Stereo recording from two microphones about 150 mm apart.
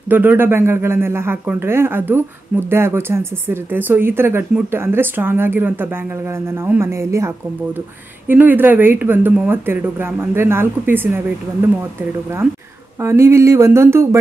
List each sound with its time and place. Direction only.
0.1 s speech: 15° right (ahead or behind)
13.0 s speech: 15° right (ahead or behind)